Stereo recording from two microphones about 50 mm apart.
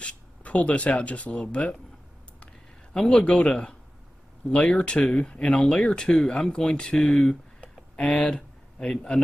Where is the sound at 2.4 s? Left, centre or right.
Centre.